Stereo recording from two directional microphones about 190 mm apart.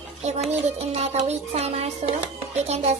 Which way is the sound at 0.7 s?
35° right (ahead or behind).